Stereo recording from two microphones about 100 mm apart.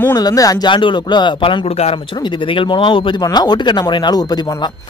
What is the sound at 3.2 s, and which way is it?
Speech, 45° left (ahead or behind).